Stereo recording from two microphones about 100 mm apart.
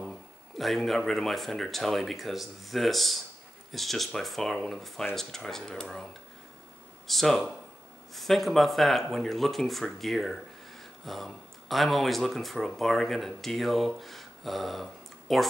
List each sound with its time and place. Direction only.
0.6 s speech: centre (ahead or behind)
7.1 s speech: 5° left (ahead or behind)